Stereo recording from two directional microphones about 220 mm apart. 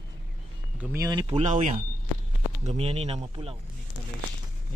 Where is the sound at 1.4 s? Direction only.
35° right (ahead or behind).